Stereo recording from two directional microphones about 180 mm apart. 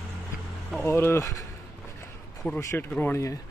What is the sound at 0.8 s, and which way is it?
Speech, 15° left (ahead or behind).